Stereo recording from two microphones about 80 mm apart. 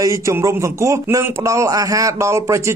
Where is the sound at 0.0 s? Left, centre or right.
Right.